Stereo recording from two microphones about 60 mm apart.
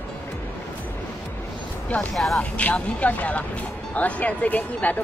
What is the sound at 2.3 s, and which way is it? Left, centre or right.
Speech, left.